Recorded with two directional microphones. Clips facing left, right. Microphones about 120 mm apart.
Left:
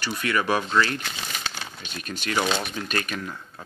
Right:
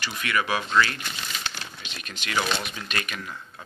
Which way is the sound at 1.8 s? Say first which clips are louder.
Left 9 dB; 45° left (ahead or behind).